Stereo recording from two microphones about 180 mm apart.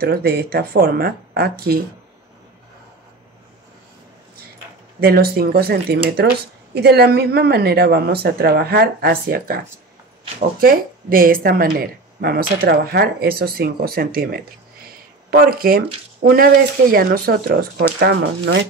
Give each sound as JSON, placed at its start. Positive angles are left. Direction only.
{"t": 0.0, "sound": "speech", "side_deg": -60}
{"t": 5.0, "sound": "speech", "side_deg": -60}